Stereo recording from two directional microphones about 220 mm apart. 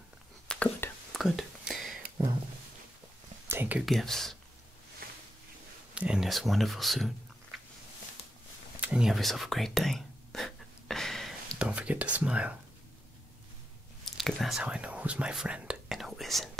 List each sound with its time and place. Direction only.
0.5 s whispering: 5° left (ahead or behind)
3.4 s speech: 10° right (ahead or behind)
5.0 s a sound: 40° right (ahead or behind)
5.9 s speech: 5° right (ahead or behind)
7.5 s a sound: centre (ahead or behind)
8.8 s whispering: 5° right (ahead or behind)
14.0 s speech: centre (ahead or behind)